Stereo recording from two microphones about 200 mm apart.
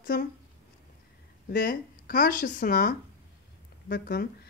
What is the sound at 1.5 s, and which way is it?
A woman's voice, 45° left (ahead or behind).